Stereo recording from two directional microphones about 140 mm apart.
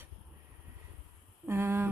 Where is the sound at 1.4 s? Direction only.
15° right (ahead or behind).